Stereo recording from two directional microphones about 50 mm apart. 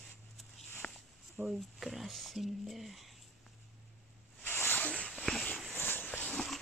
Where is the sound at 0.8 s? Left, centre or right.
Centre.